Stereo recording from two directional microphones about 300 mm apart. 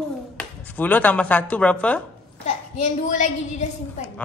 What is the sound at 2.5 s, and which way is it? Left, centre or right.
Speech, left.